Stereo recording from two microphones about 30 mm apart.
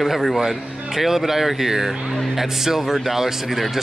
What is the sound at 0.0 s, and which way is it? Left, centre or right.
Speech, centre.